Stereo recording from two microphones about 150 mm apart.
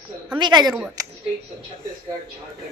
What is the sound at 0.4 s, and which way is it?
Speech, 30° right (ahead or behind).